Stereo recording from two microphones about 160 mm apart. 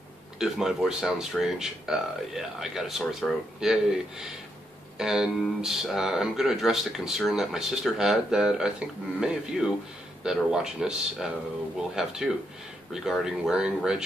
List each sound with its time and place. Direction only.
0.4 s speech: 5° right (ahead or behind)